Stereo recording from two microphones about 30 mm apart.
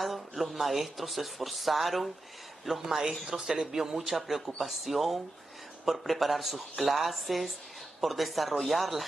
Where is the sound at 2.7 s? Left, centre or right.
Centre.